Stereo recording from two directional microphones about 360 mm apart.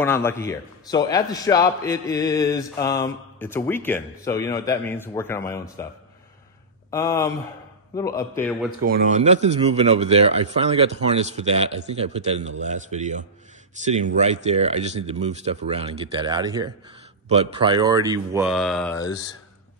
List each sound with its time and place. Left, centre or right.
0.0 s a man's voice: centre
6.9 s a man's voice: centre
8.8 s a man's voice: right; by 19.1 s centre